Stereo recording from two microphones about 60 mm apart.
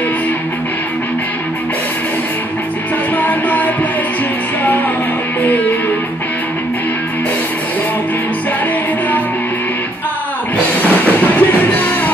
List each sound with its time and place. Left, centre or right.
3.2 s music: left
5.4 s music: left
10.8 s music: left